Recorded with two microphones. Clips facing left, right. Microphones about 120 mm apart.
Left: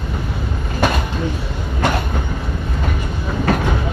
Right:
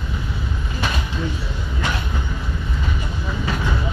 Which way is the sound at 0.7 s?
55° left (ahead or behind).